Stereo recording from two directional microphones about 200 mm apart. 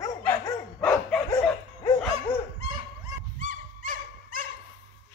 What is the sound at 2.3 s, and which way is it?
Dog, 10° left (ahead or behind).